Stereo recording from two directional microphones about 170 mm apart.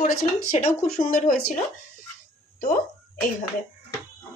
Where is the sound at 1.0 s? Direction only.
50° left (ahead or behind).